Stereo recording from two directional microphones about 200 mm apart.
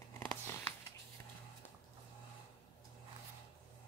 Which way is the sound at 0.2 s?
10° left (ahead or behind).